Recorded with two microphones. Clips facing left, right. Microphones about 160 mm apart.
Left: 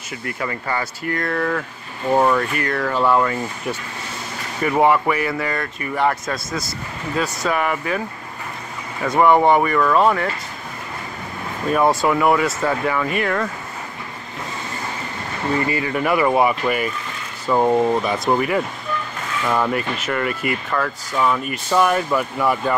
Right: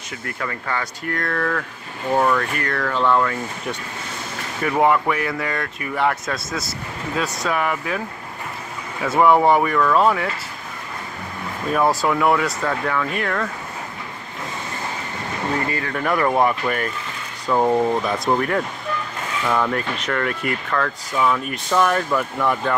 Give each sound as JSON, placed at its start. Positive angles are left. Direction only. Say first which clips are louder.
{"t": 0.2, "sound": "speech", "louder": "left 2 dB", "side_deg": 5}
{"t": 9.0, "sound": "speech", "louder": "left 1 dB", "side_deg": -5}
{"t": 11.7, "sound": "speech", "louder": "left 2 dB", "side_deg": 0}
{"t": 15.6, "sound": "speech", "louder": "left 3 dB", "side_deg": 5}